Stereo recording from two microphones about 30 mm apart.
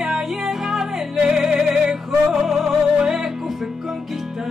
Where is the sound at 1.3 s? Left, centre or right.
Centre.